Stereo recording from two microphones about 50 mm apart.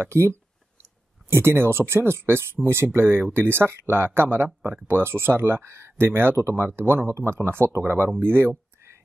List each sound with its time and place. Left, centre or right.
0.0 s speech: right
6.3 s speech: right